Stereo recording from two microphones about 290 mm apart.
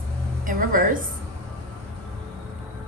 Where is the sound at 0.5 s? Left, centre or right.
Right.